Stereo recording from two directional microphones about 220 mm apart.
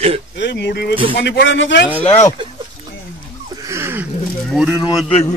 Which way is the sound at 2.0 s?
30° left (ahead or behind).